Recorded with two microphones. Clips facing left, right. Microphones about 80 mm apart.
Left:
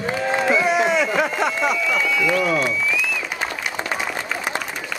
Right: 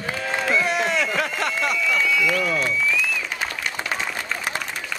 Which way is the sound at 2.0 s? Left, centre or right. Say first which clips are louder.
Left 2 dB; centre.